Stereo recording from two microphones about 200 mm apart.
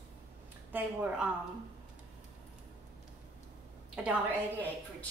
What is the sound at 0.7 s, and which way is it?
Speech, 5° right (ahead or behind).